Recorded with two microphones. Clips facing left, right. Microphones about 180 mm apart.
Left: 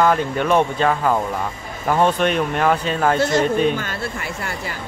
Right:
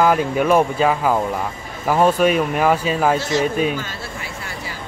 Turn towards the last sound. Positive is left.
turn(degrees=55)  # may be behind; listen again after turning